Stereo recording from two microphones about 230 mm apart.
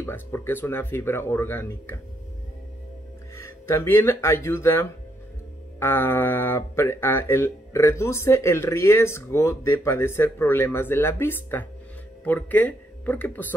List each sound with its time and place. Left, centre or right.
0.0 s speech: centre
3.3 s speech: centre